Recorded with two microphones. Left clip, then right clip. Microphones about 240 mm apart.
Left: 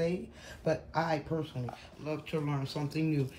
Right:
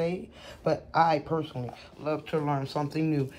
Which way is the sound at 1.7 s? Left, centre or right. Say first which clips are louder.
Right 9 dB; centre.